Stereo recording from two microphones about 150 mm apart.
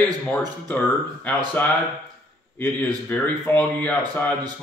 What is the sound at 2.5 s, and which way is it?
Speech, 10° left (ahead or behind).